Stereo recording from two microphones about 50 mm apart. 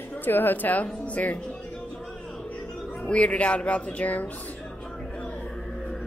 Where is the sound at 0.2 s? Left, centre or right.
Left.